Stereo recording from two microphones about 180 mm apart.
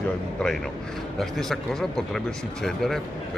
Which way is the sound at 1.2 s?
Centre (ahead or behind).